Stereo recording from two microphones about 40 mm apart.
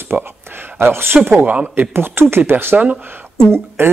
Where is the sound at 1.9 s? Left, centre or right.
Right.